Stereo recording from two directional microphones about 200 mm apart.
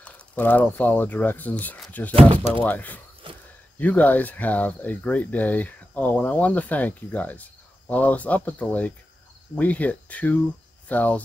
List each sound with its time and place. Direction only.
0.0 s speech: 10° left (ahead or behind)
2.3 s speech: 25° right (ahead or behind)
2.6 s speech: 10° left (ahead or behind)
3.2 s a sound: 25° right (ahead or behind)
3.7 s speech: 10° left (ahead or behind)